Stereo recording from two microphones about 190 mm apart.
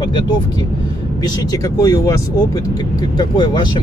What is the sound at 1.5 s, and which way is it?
Speech, 15° left (ahead or behind).